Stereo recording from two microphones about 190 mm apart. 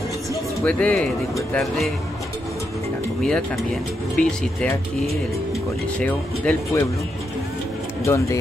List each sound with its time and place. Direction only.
0.7 s speech: 5° left (ahead or behind)
3.2 s speech: 5° left (ahead or behind)
8.0 s speech: 15° left (ahead or behind)